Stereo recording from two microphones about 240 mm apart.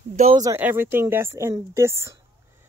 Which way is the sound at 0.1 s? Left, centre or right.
Right.